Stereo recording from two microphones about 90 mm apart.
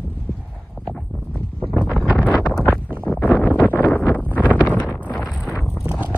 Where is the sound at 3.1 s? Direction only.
15° left (ahead or behind).